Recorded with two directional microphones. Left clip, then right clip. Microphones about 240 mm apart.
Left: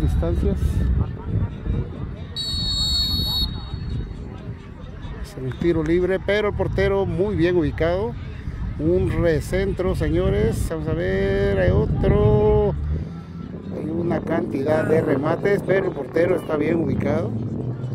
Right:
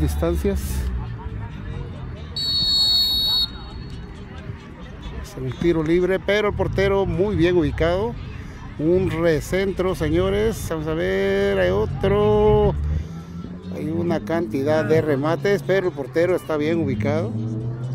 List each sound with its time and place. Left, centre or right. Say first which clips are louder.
0.0 s speech: right 3 dB; right
2.3 s buzzer: right 5 dB; centre
5.6 s speech: right 1 dB; centre
13.7 s speech: even; centre